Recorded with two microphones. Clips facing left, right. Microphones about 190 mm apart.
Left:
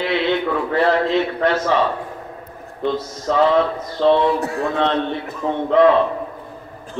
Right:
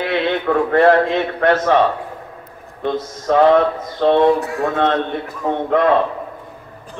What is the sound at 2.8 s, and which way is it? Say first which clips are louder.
A man's voice: even; 55° right (ahead or behind).